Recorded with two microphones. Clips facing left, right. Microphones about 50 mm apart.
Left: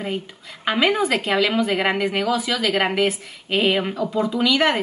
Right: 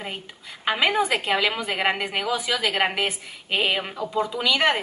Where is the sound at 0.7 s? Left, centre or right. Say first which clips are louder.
Left 2 dB; centre.